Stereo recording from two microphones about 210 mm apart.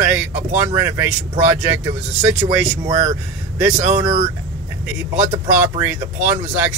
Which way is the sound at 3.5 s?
5° right (ahead or behind).